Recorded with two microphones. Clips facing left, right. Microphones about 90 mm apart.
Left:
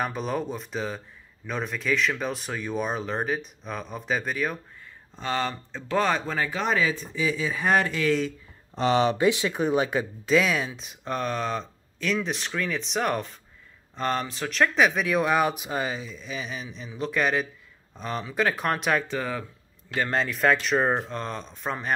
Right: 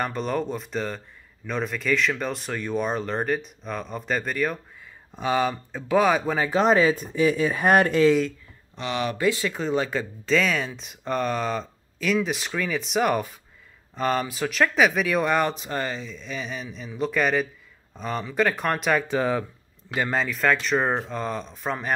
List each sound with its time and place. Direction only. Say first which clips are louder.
0.0 s speech: right 2 dB; 5° left (ahead or behind)
5.1 s speech: right 5 dB; 10° right (ahead or behind)
6.5 s speech: right 8 dB; 35° right (ahead or behind)
7.2 s speech: right 5 dB; 50° right (ahead or behind)
8.7 s speech: left 6 dB; 35° left (ahead or behind); by 19.0 s centre (ahead or behind)
19.0 s speech: right 6 dB; 20° right (ahead or behind)
20.1 s speech: even; centre (ahead or behind)